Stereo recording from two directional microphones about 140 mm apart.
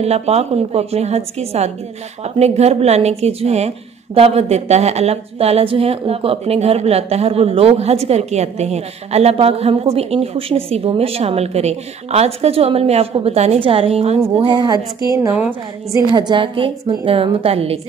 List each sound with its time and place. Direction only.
0.0 s a woman's voice: 50° right (ahead or behind)
14.3 s a woman's voice: 35° right (ahead or behind)
16.1 s a woman's voice: 35° right (ahead or behind)